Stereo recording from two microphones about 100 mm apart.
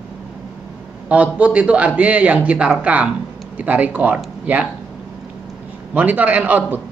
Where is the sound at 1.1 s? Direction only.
15° right (ahead or behind).